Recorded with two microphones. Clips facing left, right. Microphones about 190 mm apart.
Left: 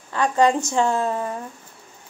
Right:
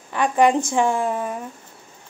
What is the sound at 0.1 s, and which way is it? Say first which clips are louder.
A woman's voice: right 1 dB; 15° right (ahead or behind).